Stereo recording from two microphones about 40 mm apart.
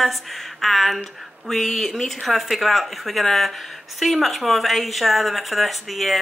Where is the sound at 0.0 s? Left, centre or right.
Centre.